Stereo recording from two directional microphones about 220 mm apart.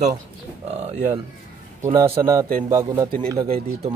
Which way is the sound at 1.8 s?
20° right (ahead or behind).